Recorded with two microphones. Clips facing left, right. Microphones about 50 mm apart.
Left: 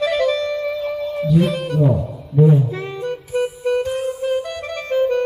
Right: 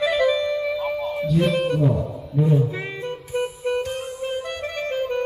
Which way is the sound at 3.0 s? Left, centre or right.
Right.